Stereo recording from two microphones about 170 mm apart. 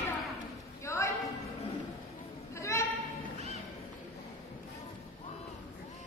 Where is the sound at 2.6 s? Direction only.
15° left (ahead or behind).